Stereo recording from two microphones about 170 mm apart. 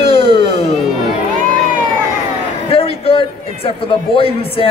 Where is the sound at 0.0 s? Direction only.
35° left (ahead or behind).